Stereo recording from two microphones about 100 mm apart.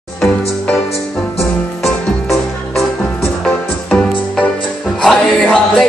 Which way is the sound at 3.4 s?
10° left (ahead or behind).